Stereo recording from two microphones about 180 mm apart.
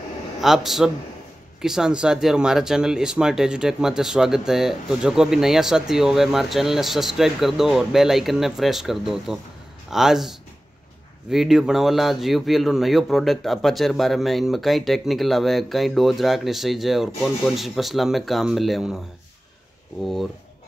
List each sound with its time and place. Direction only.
0.4 s speech: centre (ahead or behind)